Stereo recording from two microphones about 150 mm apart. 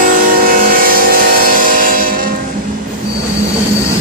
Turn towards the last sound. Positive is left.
turn(degrees=-70)  # may be behind; listen again after turning